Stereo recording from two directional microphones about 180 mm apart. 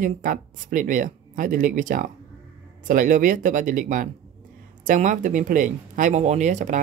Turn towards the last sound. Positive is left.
turn(degrees=-45)  # may be behind; listen again after turning